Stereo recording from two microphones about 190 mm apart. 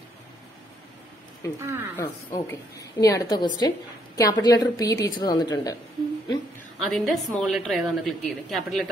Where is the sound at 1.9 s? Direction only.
15° left (ahead or behind).